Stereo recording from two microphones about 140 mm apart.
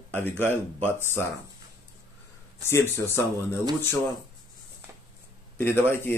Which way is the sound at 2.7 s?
15° left (ahead or behind).